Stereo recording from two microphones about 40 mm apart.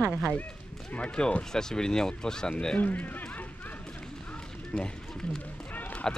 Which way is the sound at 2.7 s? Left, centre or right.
Left.